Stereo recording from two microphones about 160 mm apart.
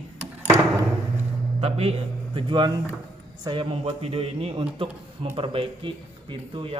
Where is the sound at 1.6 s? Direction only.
40° right (ahead or behind).